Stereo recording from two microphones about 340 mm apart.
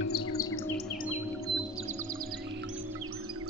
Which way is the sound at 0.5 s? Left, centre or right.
Left.